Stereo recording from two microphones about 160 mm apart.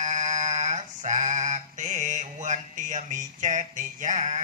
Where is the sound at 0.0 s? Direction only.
50° right (ahead or behind).